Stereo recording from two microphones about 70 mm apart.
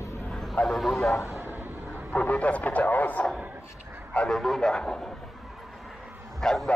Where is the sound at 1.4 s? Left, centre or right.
Right.